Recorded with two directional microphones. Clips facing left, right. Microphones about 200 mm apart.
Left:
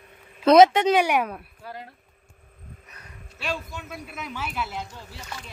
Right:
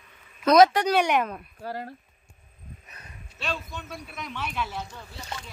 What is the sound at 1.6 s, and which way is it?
Speech, 45° right (ahead or behind).